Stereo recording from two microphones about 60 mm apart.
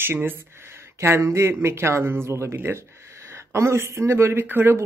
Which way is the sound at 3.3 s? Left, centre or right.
Right.